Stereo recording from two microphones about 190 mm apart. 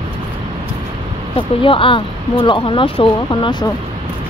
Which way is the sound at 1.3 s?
25° left (ahead or behind).